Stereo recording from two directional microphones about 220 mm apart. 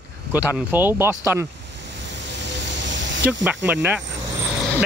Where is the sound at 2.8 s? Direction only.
55° right (ahead or behind).